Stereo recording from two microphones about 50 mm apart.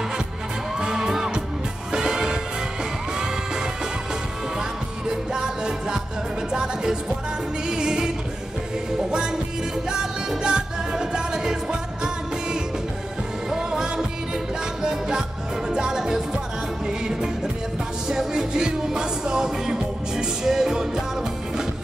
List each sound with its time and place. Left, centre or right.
0.7 s music: centre
4.6 s music: centre
9.8 s music: centre